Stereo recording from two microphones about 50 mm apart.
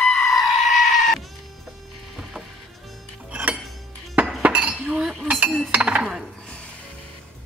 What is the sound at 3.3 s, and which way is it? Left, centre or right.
Dishes, right.